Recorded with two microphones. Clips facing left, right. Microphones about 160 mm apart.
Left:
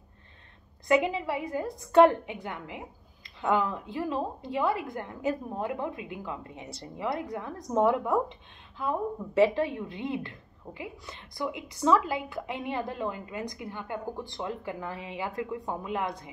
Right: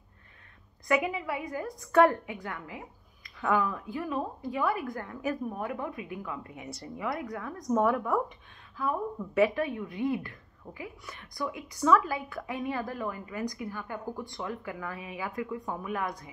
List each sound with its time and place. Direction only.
0.8 s speech: 25° left (ahead or behind)